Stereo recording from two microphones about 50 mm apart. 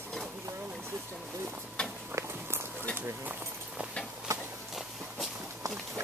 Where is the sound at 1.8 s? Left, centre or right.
Centre.